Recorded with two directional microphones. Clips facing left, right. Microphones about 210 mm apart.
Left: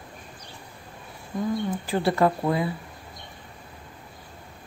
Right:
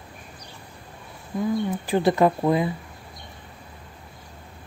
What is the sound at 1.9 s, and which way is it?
Speech, 20° right (ahead or behind).